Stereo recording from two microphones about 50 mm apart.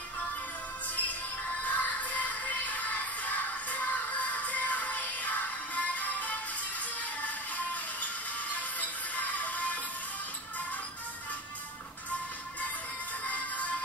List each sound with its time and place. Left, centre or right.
1.6 s music: left
13.2 s music: left